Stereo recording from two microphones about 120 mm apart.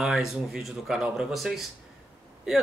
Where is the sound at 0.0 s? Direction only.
Centre (ahead or behind).